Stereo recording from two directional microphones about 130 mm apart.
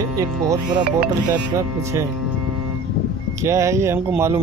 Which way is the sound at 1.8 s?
20° right (ahead or behind).